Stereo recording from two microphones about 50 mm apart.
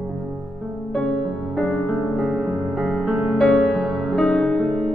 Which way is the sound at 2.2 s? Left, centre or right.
Right.